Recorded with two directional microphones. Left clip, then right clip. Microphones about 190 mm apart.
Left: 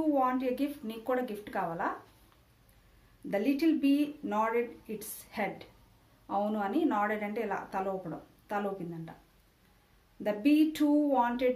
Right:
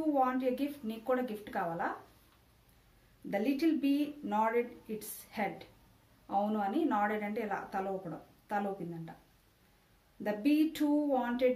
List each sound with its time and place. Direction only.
0.1 s speech: 25° left (ahead or behind)
3.3 s speech: 25° left (ahead or behind)
10.2 s speech: 25° left (ahead or behind)